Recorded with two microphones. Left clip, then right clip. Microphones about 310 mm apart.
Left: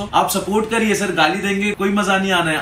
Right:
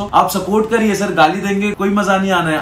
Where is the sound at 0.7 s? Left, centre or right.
Centre.